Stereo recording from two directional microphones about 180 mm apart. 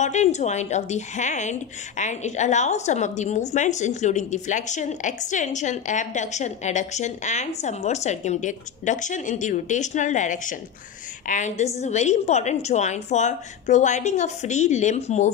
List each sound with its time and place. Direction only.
0.0 s a woman's voice: 40° left (ahead or behind)